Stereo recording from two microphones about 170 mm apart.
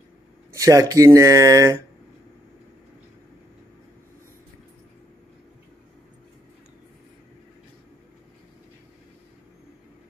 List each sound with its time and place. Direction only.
0.5 s speech: 15° right (ahead or behind)